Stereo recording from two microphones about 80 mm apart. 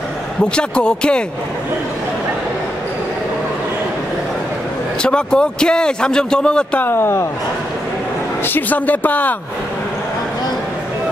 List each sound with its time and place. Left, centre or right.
0.6 s a man's voice: centre
5.0 s a man's voice: centre
6.8 s speech: left
8.5 s speech: left